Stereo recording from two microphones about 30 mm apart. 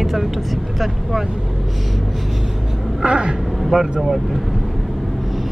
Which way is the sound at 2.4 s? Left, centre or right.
Centre.